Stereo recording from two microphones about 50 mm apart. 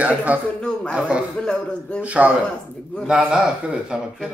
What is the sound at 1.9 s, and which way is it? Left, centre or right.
A man's voice, right.